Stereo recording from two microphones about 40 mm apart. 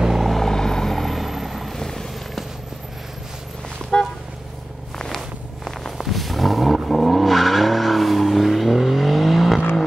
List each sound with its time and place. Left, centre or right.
0.0 s vehicle: centre
0.4 s vehicle: centre
1.8 s vehicle: centre
3.9 s toot: left
4.9 s a sound: centre
6.0 s vehicle: centre